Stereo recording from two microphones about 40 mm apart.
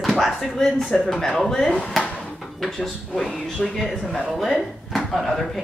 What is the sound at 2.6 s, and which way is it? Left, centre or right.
A woman's voice, centre.